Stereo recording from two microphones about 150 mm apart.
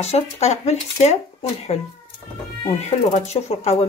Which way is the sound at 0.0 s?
45° left (ahead or behind).